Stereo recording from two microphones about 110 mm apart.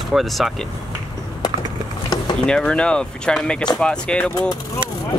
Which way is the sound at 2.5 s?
10° left (ahead or behind).